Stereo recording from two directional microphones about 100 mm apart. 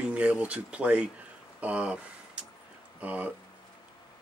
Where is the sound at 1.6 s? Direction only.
15° right (ahead or behind).